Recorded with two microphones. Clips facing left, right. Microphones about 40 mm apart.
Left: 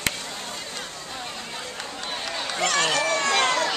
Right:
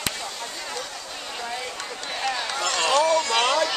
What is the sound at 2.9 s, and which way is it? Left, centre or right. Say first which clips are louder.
Run: right 4 dB; left.